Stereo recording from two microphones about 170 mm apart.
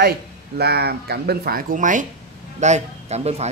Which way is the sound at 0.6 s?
70° right (ahead or behind).